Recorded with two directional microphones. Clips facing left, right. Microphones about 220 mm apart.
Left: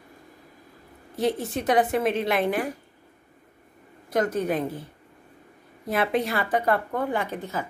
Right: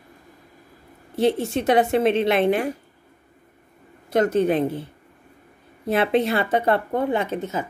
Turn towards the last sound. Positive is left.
turn(degrees=-20)  # may be behind; listen again after turning